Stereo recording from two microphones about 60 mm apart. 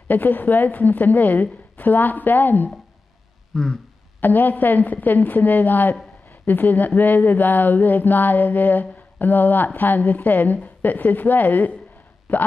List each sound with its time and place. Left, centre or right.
0.1 s a woman's voice: left
3.5 s a sound: centre
4.2 s a woman's voice: left